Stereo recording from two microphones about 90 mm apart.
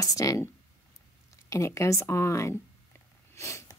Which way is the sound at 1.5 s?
30° left (ahead or behind).